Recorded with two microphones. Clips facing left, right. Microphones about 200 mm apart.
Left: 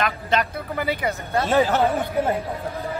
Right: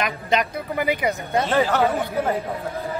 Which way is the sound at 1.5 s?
15° left (ahead or behind).